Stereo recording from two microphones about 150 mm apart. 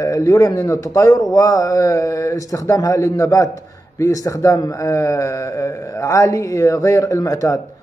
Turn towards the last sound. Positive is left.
turn(degrees=25)  # may be behind; listen again after turning